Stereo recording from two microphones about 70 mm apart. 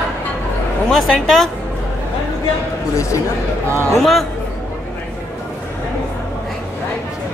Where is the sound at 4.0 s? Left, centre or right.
Centre.